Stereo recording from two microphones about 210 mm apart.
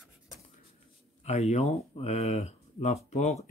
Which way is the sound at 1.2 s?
30° left (ahead or behind).